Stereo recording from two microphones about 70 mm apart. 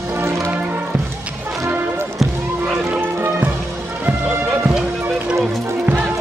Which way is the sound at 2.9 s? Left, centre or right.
Right.